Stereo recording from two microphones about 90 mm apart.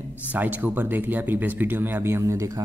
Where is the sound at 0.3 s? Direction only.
20° right (ahead or behind).